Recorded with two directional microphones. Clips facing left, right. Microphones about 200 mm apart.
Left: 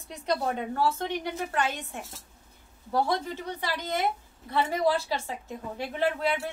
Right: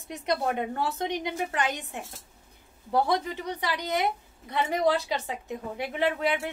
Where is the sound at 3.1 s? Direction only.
15° right (ahead or behind).